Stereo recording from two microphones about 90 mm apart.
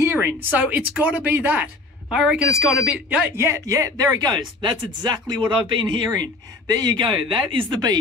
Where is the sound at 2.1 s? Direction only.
5° right (ahead or behind).